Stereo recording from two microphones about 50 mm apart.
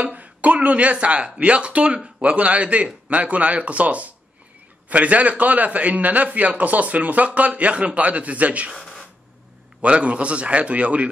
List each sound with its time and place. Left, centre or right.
0.0 s a man's voice: right
8.7 s a sound: centre
9.8 s a man's voice: right